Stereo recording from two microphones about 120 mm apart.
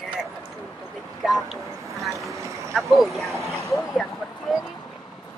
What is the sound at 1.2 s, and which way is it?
Speech, centre (ahead or behind).